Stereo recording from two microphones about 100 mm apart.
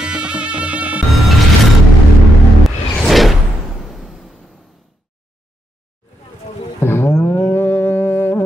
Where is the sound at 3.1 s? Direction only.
Centre (ahead or behind).